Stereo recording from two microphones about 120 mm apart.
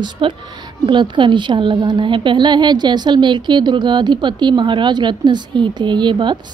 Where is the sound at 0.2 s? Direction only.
45° right (ahead or behind).